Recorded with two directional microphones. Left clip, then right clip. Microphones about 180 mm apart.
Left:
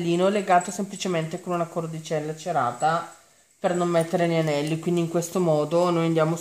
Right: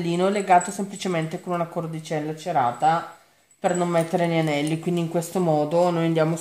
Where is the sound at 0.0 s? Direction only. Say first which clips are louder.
Left 1 dB; 35° left (ahead or behind).